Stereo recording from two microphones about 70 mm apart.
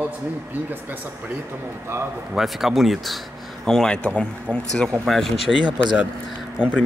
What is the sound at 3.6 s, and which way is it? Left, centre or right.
Speech, centre.